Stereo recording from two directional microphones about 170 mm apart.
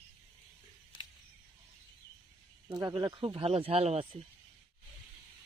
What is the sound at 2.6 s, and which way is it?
Speech, 20° right (ahead or behind).